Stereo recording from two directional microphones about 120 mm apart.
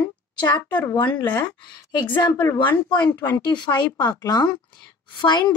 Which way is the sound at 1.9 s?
35° left (ahead or behind).